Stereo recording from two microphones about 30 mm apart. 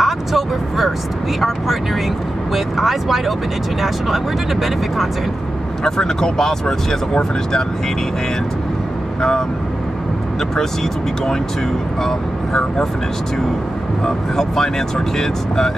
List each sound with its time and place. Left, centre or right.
0.0 s vehicle: centre
2.5 s speech: centre
5.9 s speech: centre
14.0 s speech: centre